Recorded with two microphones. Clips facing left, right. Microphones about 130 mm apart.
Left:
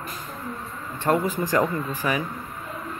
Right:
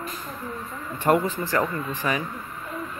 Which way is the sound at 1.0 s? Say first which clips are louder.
Right 1 dB; 5° right (ahead or behind).